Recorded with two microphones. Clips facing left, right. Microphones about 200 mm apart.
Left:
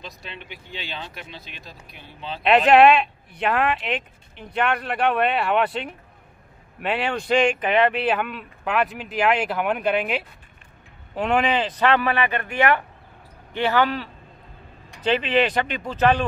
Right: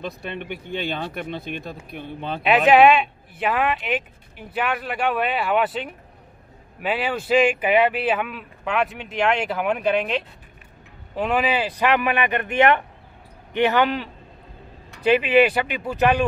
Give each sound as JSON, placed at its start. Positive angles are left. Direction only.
{"t": 0.0, "sound": "speech", "side_deg": -55}
{"t": 2.4, "sound": "speech", "side_deg": 0}